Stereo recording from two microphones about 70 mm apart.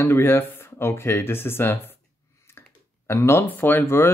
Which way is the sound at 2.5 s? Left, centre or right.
Left.